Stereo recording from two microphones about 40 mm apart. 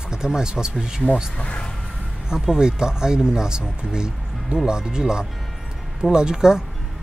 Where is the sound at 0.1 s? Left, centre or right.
Centre.